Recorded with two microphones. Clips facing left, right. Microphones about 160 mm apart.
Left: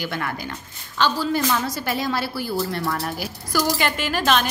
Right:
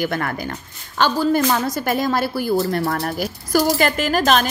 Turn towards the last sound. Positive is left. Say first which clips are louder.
# right 4 dB
turn(degrees=-40)  # may be behind; listen again after turning